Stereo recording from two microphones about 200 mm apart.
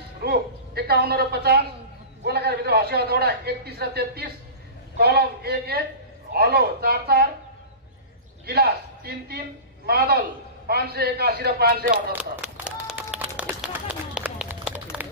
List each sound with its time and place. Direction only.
0.2 s a woman's voice: 50° right (ahead or behind)
8.5 s a man's voice: 50° right (ahead or behind)
12.1 s a sound: 5° right (ahead or behind)
13.4 s run: 5° right (ahead or behind)